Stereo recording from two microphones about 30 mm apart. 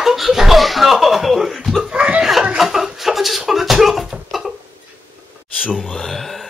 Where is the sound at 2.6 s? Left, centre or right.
Centre.